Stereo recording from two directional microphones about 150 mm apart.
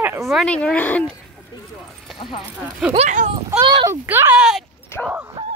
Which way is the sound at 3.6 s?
30° right (ahead or behind).